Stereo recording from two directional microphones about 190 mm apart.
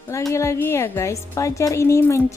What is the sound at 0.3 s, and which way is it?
A woman's voice, 15° left (ahead or behind).